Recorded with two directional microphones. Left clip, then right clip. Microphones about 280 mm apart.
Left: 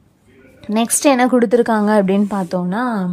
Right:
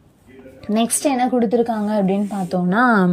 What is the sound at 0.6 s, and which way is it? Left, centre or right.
A woman's voice, centre.